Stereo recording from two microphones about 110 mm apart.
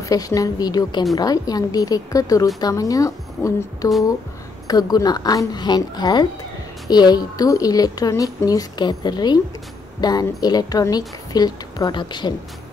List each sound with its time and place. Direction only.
0.0 s speech: 30° left (ahead or behind)